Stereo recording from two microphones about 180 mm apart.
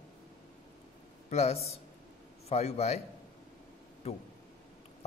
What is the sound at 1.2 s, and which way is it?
A man's voice, 35° left (ahead or behind).